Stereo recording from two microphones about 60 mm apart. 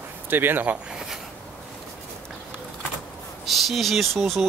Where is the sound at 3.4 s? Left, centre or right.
Centre.